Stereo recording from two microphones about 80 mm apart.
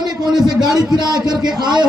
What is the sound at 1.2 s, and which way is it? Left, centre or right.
Speech, right.